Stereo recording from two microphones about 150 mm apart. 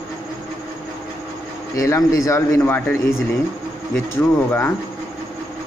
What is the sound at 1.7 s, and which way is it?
A man's voice, 20° left (ahead or behind).